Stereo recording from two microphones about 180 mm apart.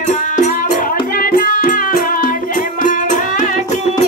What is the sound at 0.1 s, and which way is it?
Music, 45° left (ahead or behind).